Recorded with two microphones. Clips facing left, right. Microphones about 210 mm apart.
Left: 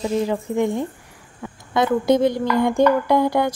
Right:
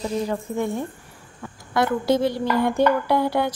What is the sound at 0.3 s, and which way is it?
Speech, 15° left (ahead or behind).